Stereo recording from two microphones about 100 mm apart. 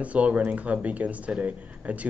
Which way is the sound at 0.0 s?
15° right (ahead or behind).